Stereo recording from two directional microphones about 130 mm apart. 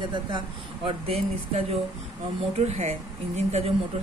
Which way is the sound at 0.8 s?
50° right (ahead or behind).